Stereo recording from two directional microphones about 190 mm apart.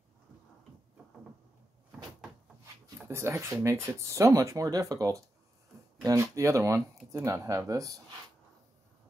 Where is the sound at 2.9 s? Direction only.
15° right (ahead or behind).